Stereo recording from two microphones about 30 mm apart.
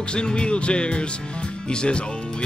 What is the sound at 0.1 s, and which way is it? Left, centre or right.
Music, left.